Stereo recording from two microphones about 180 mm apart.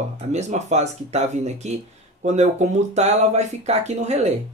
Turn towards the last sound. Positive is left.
turn(degrees=-40)  # may be behind; listen again after turning